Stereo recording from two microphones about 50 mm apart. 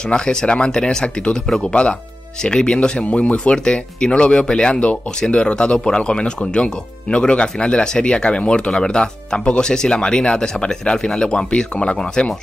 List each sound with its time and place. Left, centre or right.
0.1 s speech: centre
3.5 s speech: centre